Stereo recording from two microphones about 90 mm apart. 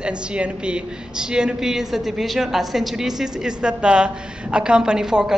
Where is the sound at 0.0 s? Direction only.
10° right (ahead or behind).